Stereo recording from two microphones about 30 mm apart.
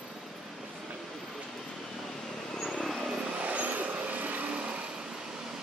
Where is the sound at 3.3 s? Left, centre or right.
Right.